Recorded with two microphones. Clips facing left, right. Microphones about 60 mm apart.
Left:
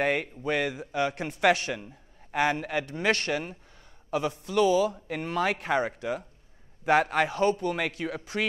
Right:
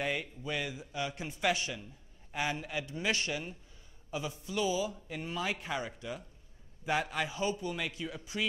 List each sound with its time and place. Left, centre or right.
0.0 s a man's voice: left